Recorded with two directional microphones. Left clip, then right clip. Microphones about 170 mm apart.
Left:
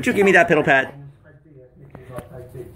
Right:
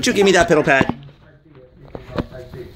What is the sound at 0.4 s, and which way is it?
Speech, 5° right (ahead or behind).